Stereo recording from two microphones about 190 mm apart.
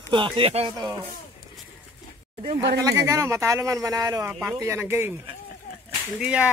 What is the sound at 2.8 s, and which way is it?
Speech, 15° right (ahead or behind).